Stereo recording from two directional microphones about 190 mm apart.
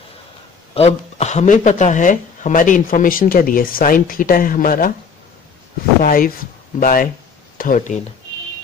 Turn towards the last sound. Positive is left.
turn(degrees=40)  # may be behind; listen again after turning